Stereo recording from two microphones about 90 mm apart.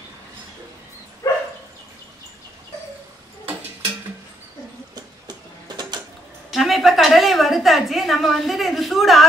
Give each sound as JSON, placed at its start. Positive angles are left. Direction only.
{"t": 1.2, "sound": "dog", "side_deg": 35}
{"t": 6.5, "sound": "a woman's voice", "side_deg": 0}